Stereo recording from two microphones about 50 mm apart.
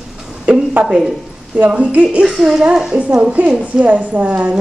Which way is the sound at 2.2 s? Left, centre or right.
Centre.